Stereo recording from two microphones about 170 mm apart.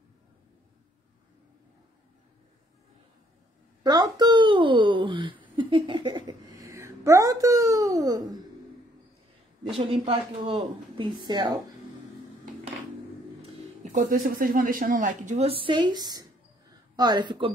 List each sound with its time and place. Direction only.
3.8 s a sound: 20° right (ahead or behind)
10.4 s speech: 25° right (ahead or behind)
13.9 s a woman's voice: 55° right (ahead or behind); by 17.5 s 25° right (ahead or behind)